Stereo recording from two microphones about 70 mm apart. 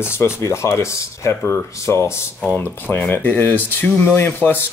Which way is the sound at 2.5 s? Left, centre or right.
Left.